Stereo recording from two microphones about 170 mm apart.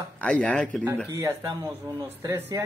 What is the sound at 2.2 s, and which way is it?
Speech, 15° right (ahead or behind).